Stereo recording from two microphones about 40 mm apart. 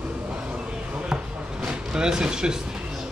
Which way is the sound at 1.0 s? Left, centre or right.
Right.